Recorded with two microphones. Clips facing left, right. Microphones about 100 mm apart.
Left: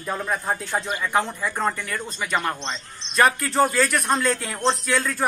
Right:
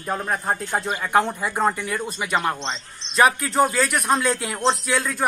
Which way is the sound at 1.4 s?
15° right (ahead or behind).